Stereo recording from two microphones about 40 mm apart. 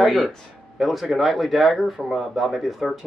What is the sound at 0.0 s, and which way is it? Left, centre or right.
Speech, centre.